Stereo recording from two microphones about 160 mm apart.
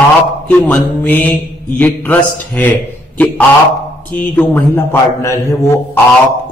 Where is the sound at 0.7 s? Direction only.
10° left (ahead or behind).